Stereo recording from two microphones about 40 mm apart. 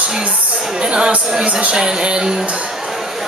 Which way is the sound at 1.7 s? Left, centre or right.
Right.